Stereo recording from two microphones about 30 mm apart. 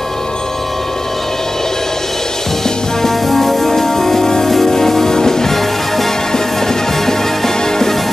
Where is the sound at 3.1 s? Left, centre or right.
Centre.